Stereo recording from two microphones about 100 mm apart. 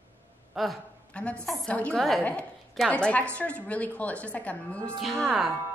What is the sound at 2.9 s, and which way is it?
Speech, 15° left (ahead or behind).